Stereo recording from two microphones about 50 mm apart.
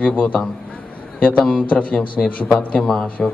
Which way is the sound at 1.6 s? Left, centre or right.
Left.